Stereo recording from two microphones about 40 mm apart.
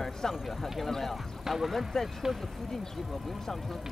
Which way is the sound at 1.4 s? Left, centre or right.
Centre.